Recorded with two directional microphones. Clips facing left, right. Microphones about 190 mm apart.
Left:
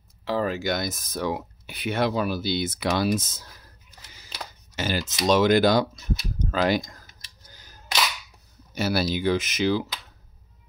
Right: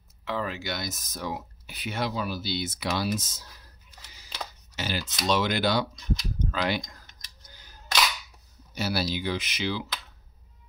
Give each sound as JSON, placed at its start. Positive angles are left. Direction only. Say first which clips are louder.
{"t": 0.2, "sound": "speech", "louder": "left 6 dB", "side_deg": 35}
{"t": 4.7, "sound": "a sound", "louder": "left 5 dB", "side_deg": 50}
{"t": 5.2, "sound": "speech", "louder": "left 7 dB", "side_deg": 45}
{"t": 8.7, "sound": "speech", "louder": "left 4 dB", "side_deg": 50}